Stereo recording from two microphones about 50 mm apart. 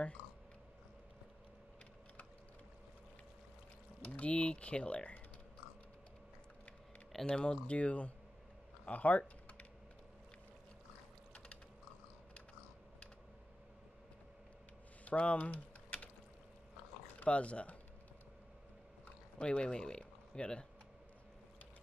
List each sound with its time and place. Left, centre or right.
4.0 s speech: left
7.2 s speech: centre
15.0 s typing: left
17.2 s speech: left
19.3 s speech: left